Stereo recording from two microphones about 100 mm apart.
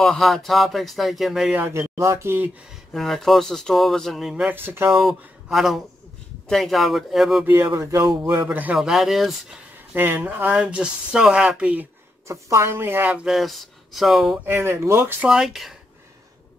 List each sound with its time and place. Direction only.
0.0 s speech: 5° left (ahead or behind)
1.7 s speech: 30° right (ahead or behind)
2.9 s speech: 5° left (ahead or behind)
4.5 s speech: 20° right (ahead or behind)
4.9 s speech: 5° right (ahead or behind)
7.4 s speech: 25° right (ahead or behind)
8.5 s a woman's voice: 15° right (ahead or behind)
8.7 s speech: 5° right (ahead or behind)
9.9 s a woman's voice: 20° right (ahead or behind)
12.3 s a woman's voice: 30° right (ahead or behind); by 14.4 s centre (ahead or behind)
14.4 s speech: 25° right (ahead or behind)
15.2 s speech: 5° right (ahead or behind)